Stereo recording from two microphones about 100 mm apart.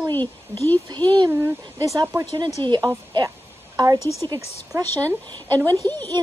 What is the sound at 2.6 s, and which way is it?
Speech, 55° right (ahead or behind).